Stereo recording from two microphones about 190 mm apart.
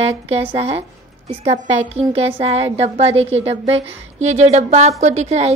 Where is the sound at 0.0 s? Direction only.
35° right (ahead or behind).